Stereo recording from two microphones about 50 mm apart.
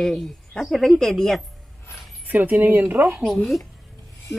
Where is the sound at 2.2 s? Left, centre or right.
Right.